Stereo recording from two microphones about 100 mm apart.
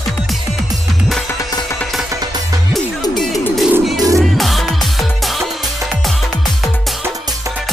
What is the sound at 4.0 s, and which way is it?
Music, 35° right (ahead or behind).